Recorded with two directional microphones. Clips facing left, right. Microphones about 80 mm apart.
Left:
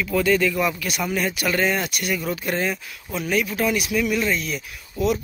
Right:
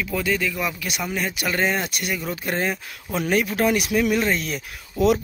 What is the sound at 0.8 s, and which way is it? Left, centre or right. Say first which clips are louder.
Speech: left 2 dB; centre.